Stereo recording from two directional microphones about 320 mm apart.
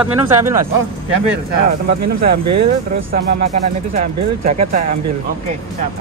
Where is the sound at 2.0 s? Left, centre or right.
Right.